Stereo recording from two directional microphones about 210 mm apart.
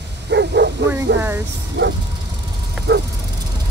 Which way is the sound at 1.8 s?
55° right (ahead or behind).